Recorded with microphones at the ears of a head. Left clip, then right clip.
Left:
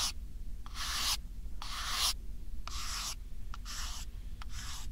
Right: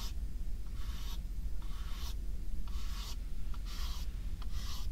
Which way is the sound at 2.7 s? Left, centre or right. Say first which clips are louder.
Left 10 dB; left.